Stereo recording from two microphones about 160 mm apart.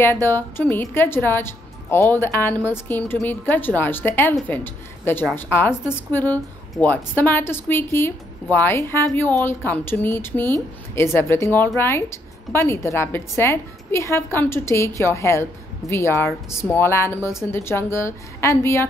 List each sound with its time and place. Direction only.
0.0 s a woman's voice: 15° left (ahead or behind)